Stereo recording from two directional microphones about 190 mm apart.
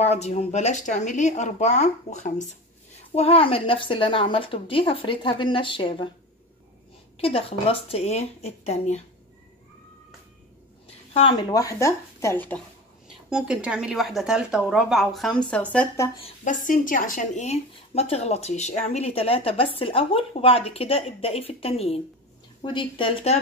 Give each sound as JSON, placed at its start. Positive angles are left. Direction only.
{"t": 0.0, "sound": "speech", "side_deg": 35}
{"t": 7.2, "sound": "speech", "side_deg": 30}
{"t": 11.1, "sound": "speech", "side_deg": 25}
{"t": 13.3, "sound": "speech", "side_deg": -5}
{"t": 16.4, "sound": "speech", "side_deg": 45}